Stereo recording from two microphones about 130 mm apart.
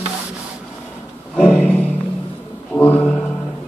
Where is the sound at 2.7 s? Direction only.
10° left (ahead or behind).